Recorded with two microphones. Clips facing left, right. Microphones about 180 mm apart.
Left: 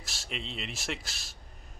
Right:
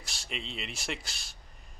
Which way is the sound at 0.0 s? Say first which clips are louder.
Left 1 dB; centre (ahead or behind).